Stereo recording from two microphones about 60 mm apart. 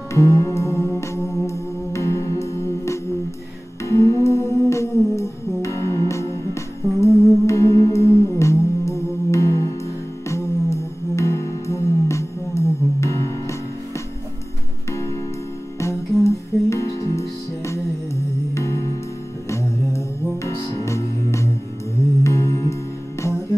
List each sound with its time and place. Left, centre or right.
0.1 s music: left
10.2 s music: left
14.9 s music: left